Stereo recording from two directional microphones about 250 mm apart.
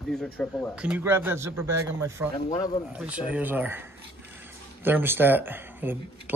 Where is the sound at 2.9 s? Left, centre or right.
Centre.